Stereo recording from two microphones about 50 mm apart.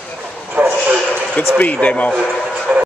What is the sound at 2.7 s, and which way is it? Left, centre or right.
Speech, right.